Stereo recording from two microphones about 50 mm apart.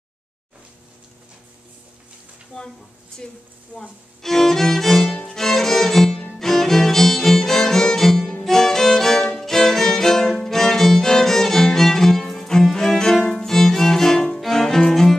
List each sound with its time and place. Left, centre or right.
2.5 s speech: left
3.7 s speech: centre
4.2 s music: centre
5.1 s violin: centre
6.4 s music: centre
14.8 s cello: centre